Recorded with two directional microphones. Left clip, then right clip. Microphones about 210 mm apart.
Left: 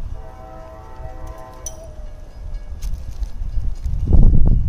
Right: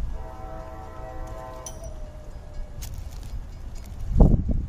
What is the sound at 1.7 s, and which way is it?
Music, 55° left (ahead or behind).